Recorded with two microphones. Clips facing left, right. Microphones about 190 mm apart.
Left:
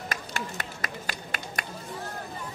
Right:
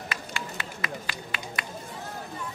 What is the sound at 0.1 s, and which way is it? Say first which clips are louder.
Run: left 2 dB; 45° left (ahead or behind).